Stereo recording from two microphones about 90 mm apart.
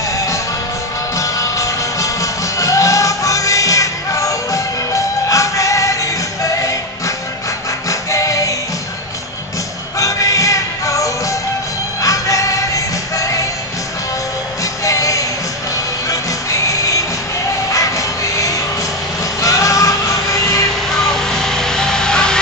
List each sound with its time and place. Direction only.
1.1 s music: 40° left (ahead or behind)
7.9 s music: 35° left (ahead or behind)
9.9 s music: 40° left (ahead or behind)
14.6 s music: 40° left (ahead or behind)
21.0 s music: 5° left (ahead or behind)